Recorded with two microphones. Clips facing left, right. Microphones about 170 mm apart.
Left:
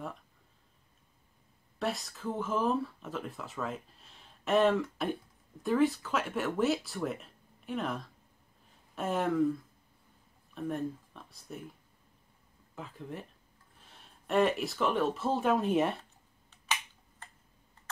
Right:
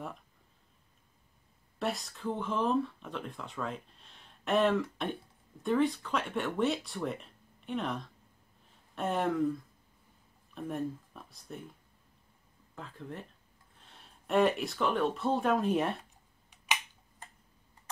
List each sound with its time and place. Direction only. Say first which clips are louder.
1.8 s speech: even; centre (ahead or behind)
10.5 s speech: left 1 dB; centre (ahead or behind)
12.7 s speech: left 1 dB; 5° left (ahead or behind)
16.0 s a sound: even; 10° right (ahead or behind)